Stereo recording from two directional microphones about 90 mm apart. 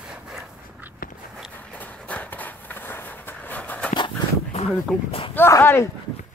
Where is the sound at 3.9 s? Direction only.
65° left (ahead or behind).